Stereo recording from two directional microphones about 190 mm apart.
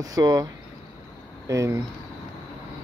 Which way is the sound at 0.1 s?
20° right (ahead or behind).